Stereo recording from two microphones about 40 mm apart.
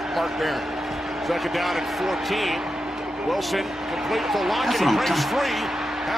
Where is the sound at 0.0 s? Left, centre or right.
Centre.